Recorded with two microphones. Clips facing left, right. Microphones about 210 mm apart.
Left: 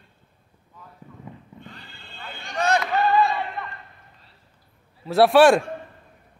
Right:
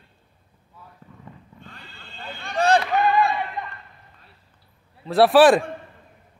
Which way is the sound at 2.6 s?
30° right (ahead or behind).